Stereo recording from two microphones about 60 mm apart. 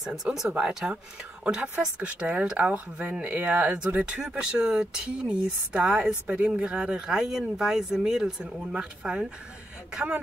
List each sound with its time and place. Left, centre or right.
0.0 s speech: centre
0.6 s speech: centre
7.1 s speech: centre